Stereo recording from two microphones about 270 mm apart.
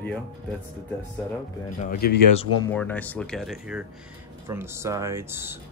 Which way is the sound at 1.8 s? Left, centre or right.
Left.